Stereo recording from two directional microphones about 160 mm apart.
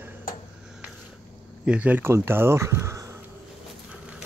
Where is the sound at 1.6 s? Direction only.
10° right (ahead or behind).